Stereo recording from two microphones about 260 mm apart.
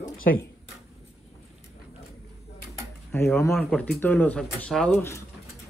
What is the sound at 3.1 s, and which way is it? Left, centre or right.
Speech, centre.